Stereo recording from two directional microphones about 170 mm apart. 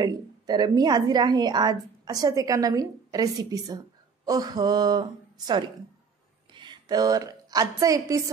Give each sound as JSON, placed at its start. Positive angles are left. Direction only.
{"t": 0.0, "sound": "a woman's voice", "side_deg": -25}
{"t": 6.5, "sound": "a woman's voice", "side_deg": -25}